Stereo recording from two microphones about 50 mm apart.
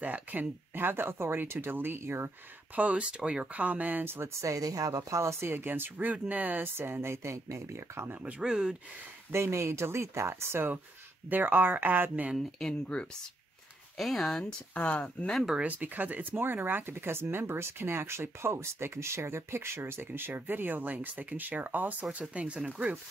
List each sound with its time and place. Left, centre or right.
0.0 s speech: right
2.7 s speech: right
3.5 s speech: right
8.1 s speech: right
8.4 s speech: centre
9.3 s speech: right
11.2 s speech: right
12.4 s speech: centre
13.9 s speech: centre
14.7 s speech: left
15.6 s speech: right
16.3 s speech: right
22.2 s speech: right